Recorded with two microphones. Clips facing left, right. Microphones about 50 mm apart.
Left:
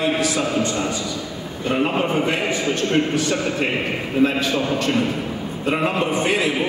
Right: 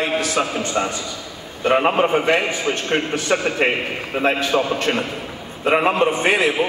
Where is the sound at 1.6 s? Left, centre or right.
Right.